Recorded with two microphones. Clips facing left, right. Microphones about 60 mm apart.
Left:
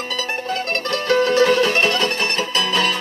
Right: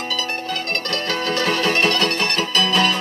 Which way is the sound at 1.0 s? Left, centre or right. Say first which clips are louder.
Left 9 dB; left.